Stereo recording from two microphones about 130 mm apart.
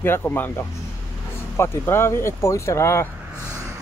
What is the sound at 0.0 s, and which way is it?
Speech, 15° left (ahead or behind).